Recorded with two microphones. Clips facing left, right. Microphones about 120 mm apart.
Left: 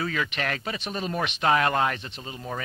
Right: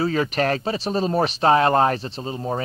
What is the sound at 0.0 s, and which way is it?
Speech, 35° right (ahead or behind).